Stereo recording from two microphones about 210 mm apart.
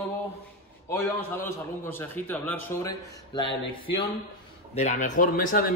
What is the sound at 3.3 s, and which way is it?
A man's voice, 25° left (ahead or behind).